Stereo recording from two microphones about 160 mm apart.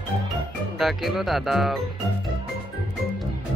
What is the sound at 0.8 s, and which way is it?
Speech, centre (ahead or behind).